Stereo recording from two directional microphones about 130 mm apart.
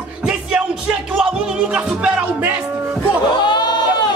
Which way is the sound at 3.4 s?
35° left (ahead or behind).